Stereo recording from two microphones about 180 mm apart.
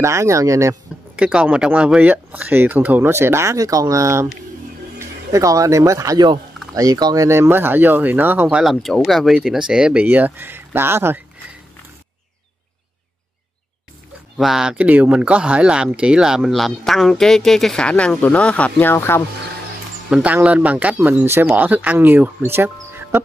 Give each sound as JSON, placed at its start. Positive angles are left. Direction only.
{"t": 0.0, "sound": "speech", "side_deg": -15}
{"t": 1.1, "sound": "speech", "side_deg": -5}
{"t": 14.3, "sound": "speech", "side_deg": 0}
{"t": 20.1, "sound": "speech", "side_deg": -5}